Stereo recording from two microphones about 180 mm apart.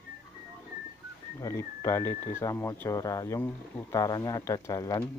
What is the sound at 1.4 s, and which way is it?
Speech, 15° left (ahead or behind).